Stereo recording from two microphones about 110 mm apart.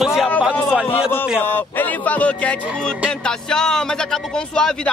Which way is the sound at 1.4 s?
15° left (ahead or behind).